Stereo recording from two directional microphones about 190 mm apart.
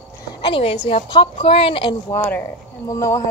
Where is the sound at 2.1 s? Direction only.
10° left (ahead or behind).